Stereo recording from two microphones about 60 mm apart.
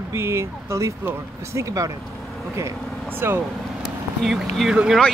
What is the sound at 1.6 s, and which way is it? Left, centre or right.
Speech, right.